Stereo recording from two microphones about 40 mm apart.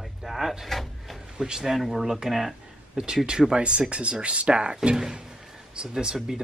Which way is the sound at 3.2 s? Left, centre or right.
Right.